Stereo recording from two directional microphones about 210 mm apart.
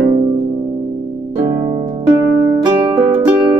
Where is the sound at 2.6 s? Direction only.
20° right (ahead or behind).